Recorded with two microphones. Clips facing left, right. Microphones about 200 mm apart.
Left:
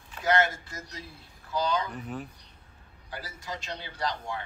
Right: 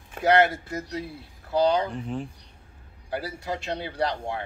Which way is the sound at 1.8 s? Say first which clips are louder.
Right 5 dB; 30° right (ahead or behind).